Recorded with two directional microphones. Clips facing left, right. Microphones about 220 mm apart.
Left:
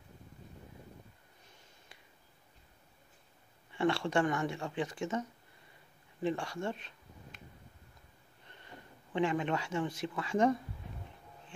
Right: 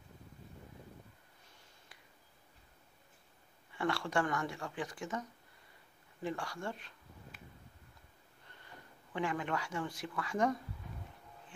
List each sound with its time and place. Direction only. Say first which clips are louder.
3.7 s speech: left 4 dB; 25° left (ahead or behind)
6.2 s speech: left 5 dB; 25° left (ahead or behind)
8.5 s speech: left 4 dB; 20° left (ahead or behind)